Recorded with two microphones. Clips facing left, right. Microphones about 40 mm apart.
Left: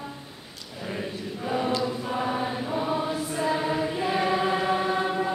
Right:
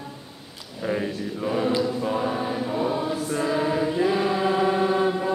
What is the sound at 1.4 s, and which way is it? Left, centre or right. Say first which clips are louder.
Choir: right 3 dB; centre.